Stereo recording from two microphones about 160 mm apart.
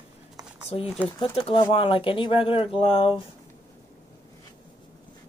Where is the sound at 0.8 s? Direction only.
10° right (ahead or behind).